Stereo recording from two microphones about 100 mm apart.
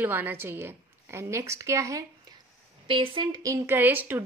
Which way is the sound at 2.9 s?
55° right (ahead or behind).